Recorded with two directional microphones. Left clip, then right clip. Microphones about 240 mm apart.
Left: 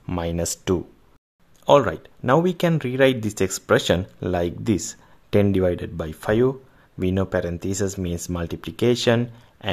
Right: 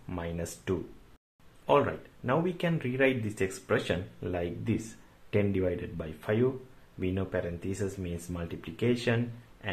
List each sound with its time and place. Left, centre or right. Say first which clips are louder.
0.0 s speech: left 11 dB; left